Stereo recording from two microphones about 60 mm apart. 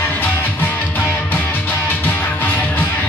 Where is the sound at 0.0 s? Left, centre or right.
Left.